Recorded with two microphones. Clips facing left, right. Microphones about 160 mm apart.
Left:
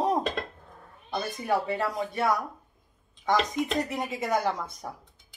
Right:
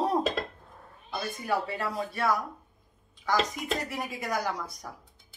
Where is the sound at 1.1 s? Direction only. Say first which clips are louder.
Left 3 dB; 25° left (ahead or behind).